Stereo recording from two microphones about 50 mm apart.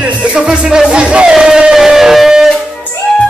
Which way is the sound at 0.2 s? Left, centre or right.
Centre.